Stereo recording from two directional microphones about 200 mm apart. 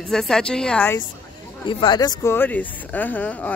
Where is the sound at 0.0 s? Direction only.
Centre (ahead or behind).